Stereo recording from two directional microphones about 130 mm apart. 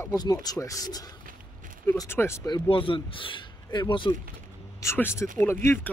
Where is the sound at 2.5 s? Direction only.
40° left (ahead or behind).